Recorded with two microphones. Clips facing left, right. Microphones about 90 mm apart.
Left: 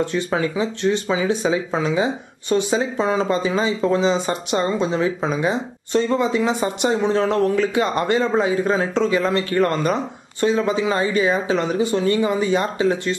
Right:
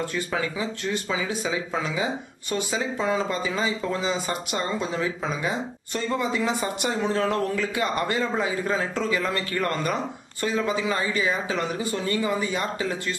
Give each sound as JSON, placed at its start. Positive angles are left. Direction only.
{"t": 0.0, "sound": "speech", "side_deg": 25}